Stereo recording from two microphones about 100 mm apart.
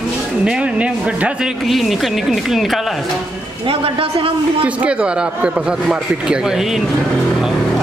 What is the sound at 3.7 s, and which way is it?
Speech, 70° right (ahead or behind).